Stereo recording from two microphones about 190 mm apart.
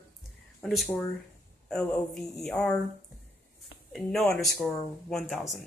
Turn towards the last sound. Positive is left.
turn(degrees=0)  # may be behind; listen again after turning